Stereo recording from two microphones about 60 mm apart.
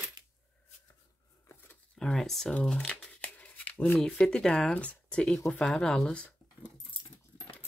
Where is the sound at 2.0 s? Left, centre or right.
Centre.